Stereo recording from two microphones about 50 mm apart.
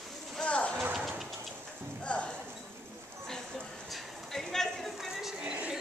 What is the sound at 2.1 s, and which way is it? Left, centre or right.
Clip-clop, left.